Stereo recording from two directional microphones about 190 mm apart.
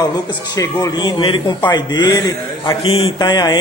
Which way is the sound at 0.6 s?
20° left (ahead or behind).